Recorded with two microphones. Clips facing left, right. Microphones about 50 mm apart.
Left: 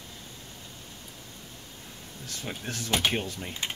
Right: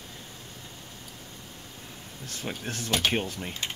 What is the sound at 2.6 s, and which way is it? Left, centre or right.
Speech, right.